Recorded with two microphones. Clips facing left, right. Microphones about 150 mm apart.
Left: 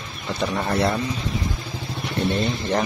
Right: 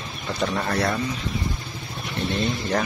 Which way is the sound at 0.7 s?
30° left (ahead or behind).